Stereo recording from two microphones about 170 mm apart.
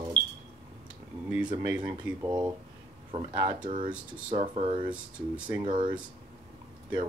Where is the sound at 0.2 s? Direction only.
80° right.